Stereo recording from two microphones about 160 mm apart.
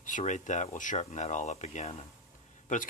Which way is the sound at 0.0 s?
50° left (ahead or behind).